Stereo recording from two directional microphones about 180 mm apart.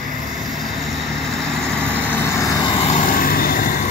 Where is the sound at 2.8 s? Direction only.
40° left (ahead or behind).